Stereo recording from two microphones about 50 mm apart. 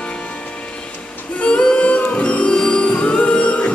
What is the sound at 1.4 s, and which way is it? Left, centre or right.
Music, centre.